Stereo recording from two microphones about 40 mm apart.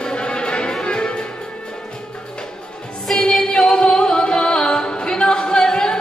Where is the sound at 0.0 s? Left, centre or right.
Left.